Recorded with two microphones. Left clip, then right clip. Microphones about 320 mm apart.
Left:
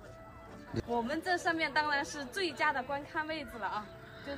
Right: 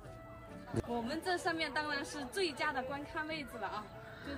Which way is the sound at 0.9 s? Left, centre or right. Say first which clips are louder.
Left 5 dB; centre.